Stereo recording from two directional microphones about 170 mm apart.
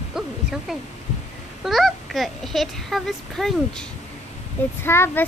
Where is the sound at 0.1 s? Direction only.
Centre (ahead or behind).